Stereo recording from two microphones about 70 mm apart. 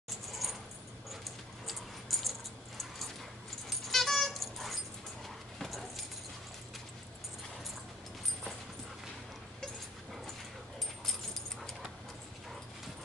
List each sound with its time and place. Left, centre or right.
0.3 s coin: centre
1.7 s dog: centre
3.6 s dog: centre
5.6 s keys jangling: centre